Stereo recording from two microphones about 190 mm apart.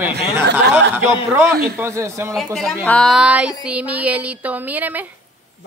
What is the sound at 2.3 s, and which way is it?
Speech, centre (ahead or behind).